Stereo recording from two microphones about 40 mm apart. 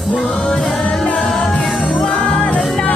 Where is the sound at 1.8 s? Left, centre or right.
Left.